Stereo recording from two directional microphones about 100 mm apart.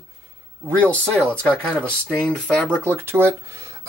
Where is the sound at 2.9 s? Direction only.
25° right (ahead or behind).